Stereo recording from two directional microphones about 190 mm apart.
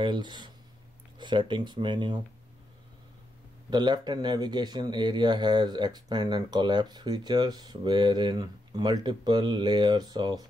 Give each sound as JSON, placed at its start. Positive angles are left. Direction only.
{"t": 0.0, "sound": "speech", "side_deg": -25}
{"t": 1.1, "sound": "a sound", "side_deg": -25}
{"t": 1.5, "sound": "speech", "side_deg": -25}
{"t": 3.7, "sound": "speech", "side_deg": -20}